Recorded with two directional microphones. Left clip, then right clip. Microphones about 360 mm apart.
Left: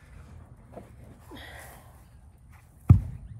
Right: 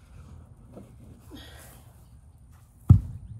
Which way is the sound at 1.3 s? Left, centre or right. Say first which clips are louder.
Left 3 dB; centre.